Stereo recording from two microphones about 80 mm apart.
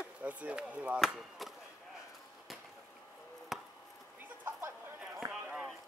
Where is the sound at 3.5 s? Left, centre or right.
Centre.